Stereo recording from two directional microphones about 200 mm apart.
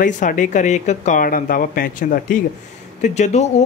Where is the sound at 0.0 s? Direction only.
40° left (ahead or behind).